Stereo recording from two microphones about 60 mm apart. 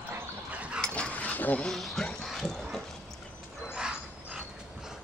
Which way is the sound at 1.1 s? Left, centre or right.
Left.